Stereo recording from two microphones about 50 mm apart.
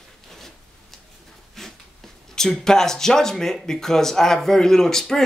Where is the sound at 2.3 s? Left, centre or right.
Centre.